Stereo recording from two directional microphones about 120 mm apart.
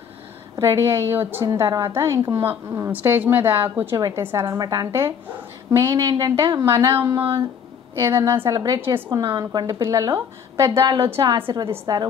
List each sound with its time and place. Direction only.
0.6 s a woman's voice: 25° right (ahead or behind)
6.6 s a woman's voice: 25° right (ahead or behind)
7.2 s a woman's voice: 50° right (ahead or behind)
8.0 s a woman's voice: 25° right (ahead or behind)
8.8 s a woman's voice: 20° right (ahead or behind)
9.4 s a woman's voice: 30° right (ahead or behind)
10.7 s a woman's voice: 45° right (ahead or behind)
11.8 s a woman's voice: 35° right (ahead or behind)